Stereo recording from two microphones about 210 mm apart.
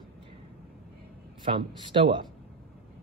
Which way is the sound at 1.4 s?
25° right (ahead or behind).